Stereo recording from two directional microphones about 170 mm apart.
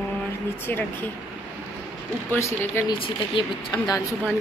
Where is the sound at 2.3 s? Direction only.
15° left (ahead or behind).